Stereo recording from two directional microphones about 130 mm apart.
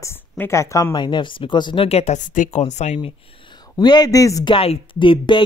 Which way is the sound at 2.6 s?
55° left (ahead or behind).